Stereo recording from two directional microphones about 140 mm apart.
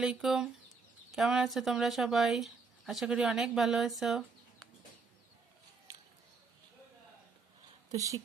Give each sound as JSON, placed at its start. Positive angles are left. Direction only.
{"t": 0.0, "sound": "speech", "side_deg": -5}
{"t": 7.9, "sound": "speech", "side_deg": -25}